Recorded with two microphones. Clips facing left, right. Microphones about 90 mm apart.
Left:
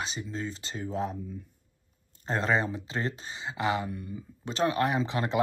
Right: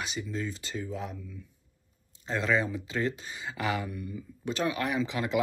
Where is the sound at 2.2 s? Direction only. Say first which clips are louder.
Left 1 dB; 40° left (ahead or behind).